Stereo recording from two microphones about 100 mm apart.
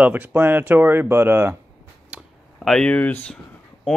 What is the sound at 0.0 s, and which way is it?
Speech, 15° right (ahead or behind).